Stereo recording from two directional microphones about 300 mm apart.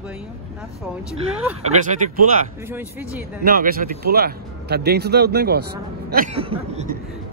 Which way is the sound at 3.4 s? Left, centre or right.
Right.